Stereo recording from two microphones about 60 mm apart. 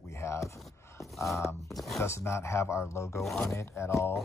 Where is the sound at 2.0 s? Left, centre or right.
Left.